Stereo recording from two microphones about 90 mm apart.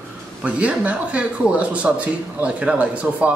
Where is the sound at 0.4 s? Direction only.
15° right (ahead or behind).